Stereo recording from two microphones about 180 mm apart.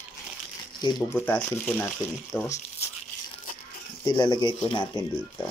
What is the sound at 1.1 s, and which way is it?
Speech, 10° left (ahead or behind).